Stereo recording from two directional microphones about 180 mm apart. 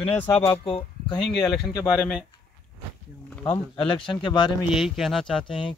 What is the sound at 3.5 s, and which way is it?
Speech, 30° left (ahead or behind).